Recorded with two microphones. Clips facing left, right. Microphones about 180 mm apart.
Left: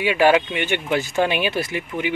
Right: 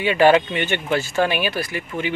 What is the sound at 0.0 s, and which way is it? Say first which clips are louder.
Speech: right 2 dB; 10° left (ahead or behind).